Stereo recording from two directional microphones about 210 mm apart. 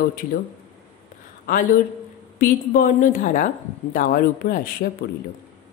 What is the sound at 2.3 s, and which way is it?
A woman's voice, 40° left (ahead or behind).